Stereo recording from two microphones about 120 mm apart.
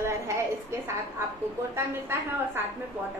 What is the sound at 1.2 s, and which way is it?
A woman's voice, 20° right (ahead or behind).